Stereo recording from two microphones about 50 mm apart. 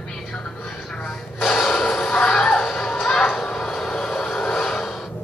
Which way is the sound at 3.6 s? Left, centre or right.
Centre.